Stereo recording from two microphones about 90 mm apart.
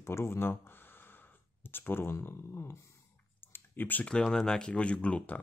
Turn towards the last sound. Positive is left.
turn(degrees=15)  # may be behind; listen again after turning